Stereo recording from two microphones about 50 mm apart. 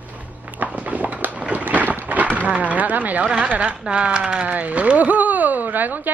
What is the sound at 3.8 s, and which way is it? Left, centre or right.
Speech, right.